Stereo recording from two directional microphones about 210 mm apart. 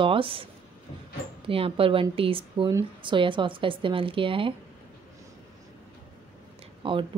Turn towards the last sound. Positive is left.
turn(degrees=-25)  # may be behind; listen again after turning